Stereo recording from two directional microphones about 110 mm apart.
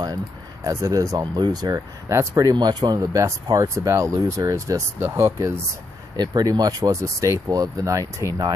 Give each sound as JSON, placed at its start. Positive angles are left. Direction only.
{"t": 0.7, "sound": "speech", "side_deg": -30}
{"t": 2.5, "sound": "speech", "side_deg": -45}
{"t": 6.1, "sound": "speech", "side_deg": -40}